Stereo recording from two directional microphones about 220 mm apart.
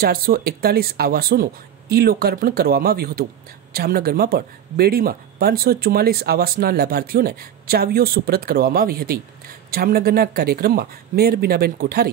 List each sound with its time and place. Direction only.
0.0 s speech: 45° right (ahead or behind)